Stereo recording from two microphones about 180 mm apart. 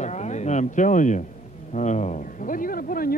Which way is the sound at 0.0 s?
40° left (ahead or behind).